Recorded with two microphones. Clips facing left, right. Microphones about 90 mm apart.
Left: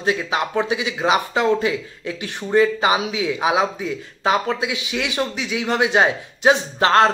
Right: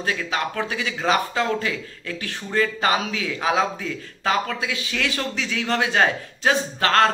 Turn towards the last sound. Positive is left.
turn(degrees=20)  # may be behind; listen again after turning